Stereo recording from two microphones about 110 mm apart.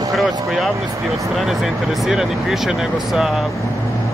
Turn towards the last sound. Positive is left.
turn(degrees=0)  # may be behind; listen again after turning